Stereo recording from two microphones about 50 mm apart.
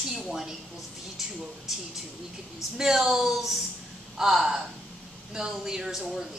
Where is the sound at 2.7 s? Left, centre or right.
Centre.